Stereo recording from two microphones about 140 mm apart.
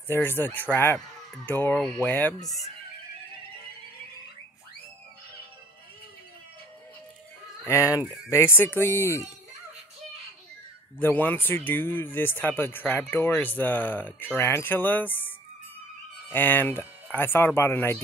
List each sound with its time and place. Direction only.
0.1 s speech: 15° left (ahead or behind)
7.6 s speech: 20° left (ahead or behind)
11.0 s speech: 15° left (ahead or behind)